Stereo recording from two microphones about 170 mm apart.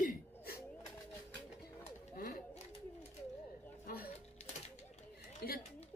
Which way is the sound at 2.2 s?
65° left (ahead or behind).